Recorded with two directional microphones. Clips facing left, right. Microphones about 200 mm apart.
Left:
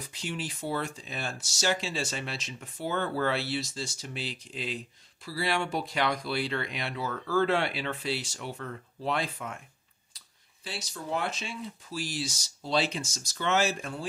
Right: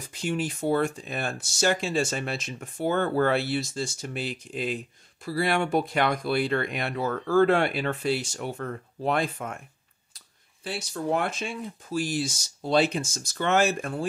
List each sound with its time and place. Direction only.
0.1 s speech: 50° right (ahead or behind)